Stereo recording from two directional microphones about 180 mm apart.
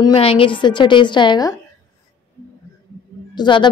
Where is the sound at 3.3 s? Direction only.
25° left (ahead or behind).